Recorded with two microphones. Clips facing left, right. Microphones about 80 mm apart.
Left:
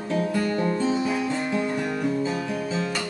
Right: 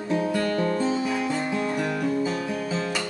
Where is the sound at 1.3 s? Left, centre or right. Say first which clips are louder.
Even; centre.